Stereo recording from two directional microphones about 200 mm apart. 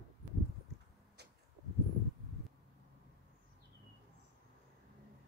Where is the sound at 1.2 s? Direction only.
55° right (ahead or behind).